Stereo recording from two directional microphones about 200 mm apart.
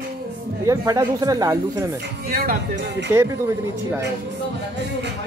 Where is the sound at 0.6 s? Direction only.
15° right (ahead or behind).